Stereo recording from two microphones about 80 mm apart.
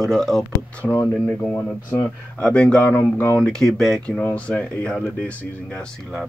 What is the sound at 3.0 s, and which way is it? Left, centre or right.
Speech, left.